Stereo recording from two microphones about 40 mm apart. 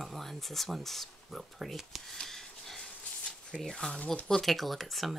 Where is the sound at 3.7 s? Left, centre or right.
Centre.